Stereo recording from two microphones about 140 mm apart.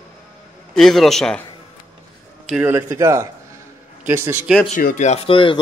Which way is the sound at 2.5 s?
10° right (ahead or behind).